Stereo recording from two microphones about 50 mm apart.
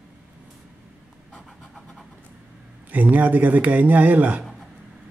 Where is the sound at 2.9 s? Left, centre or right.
Right.